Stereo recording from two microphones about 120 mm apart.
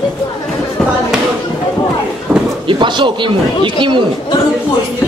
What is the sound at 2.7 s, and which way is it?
Speech, 40° right (ahead or behind).